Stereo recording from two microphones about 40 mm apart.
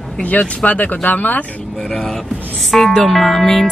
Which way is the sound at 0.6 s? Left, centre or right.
Left.